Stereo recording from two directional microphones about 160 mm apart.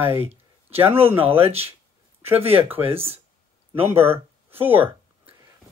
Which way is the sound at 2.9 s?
35° right (ahead or behind).